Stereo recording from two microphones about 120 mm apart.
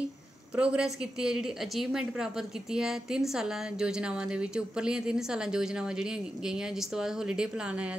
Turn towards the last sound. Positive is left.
turn(degrees=-10)  # may be behind; listen again after turning